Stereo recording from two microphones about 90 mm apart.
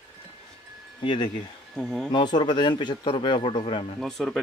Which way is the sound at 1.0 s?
70° left (ahead or behind).